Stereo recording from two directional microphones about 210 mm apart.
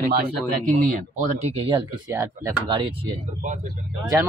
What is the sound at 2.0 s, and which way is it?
Speech, 15° right (ahead or behind).